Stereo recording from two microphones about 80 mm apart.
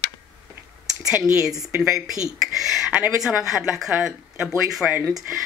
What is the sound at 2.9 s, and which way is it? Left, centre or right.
Speech, centre.